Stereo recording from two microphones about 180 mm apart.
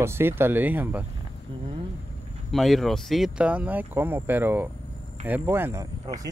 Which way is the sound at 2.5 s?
Centre (ahead or behind).